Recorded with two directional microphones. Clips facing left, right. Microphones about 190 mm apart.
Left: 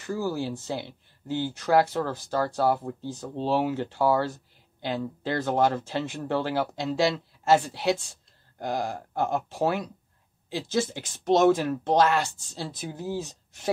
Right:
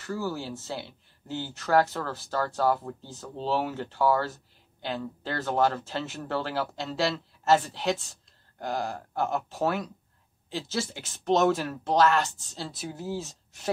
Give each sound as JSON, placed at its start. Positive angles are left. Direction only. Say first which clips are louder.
{"t": 0.0, "sound": "speech", "louder": "left 3 dB", "side_deg": 15}